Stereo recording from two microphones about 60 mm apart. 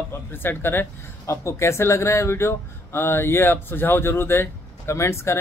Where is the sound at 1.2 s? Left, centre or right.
Left.